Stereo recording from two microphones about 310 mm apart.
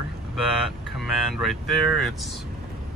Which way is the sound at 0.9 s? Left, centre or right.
Centre.